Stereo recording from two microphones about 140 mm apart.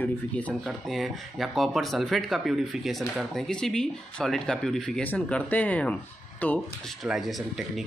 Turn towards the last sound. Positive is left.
turn(degrees=0)  # may be behind; listen again after turning